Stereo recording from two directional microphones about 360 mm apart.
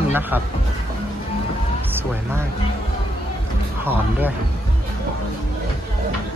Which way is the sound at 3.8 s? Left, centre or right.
Centre.